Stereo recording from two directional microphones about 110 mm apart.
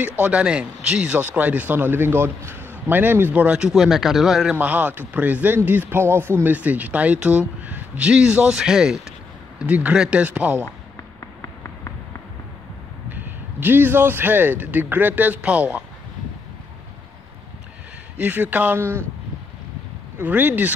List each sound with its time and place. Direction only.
0.0 s speech: 15° right (ahead or behind)
4.6 s speech: 15° right (ahead or behind)
11.1 s a sound: 25° left (ahead or behind)
13.1 s speech: 15° right (ahead or behind)
18.1 s speech: 15° right (ahead or behind)
20.2 s speech: 15° right (ahead or behind)